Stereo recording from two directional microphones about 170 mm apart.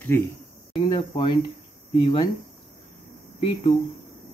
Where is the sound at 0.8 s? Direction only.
30° left (ahead or behind).